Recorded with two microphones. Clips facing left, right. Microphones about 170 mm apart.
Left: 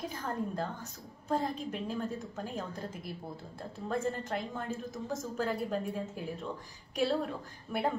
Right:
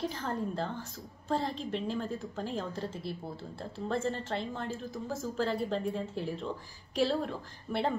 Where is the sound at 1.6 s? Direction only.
30° right (ahead or behind).